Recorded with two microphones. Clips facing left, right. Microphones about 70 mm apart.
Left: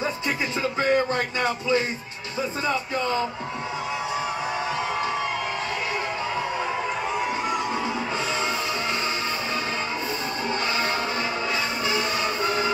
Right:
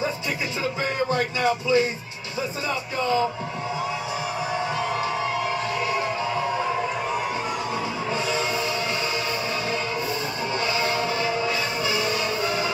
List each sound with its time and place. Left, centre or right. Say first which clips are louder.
1.1 s speech: right 2 dB; left
10.7 s music: right 1 dB; left